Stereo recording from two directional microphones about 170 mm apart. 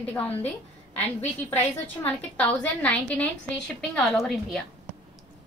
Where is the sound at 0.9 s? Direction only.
40° left (ahead or behind).